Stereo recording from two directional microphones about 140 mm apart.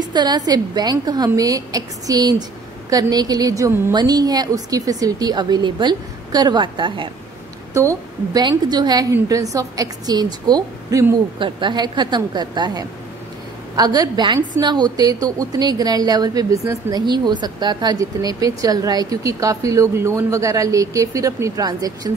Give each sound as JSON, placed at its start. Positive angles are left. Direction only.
{"t": 0.0, "sound": "a sound", "side_deg": -30}
{"t": 0.5, "sound": "a woman's voice", "side_deg": -30}
{"t": 7.7, "sound": "a woman's voice", "side_deg": -20}
{"t": 11.3, "sound": "a woman's voice", "side_deg": -35}